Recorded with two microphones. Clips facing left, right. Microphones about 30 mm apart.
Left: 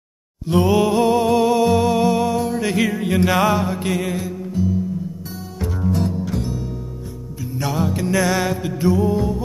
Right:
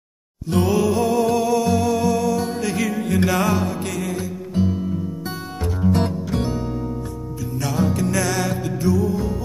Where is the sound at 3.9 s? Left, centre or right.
Centre.